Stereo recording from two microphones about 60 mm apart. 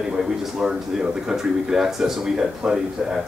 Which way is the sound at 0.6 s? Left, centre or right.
Centre.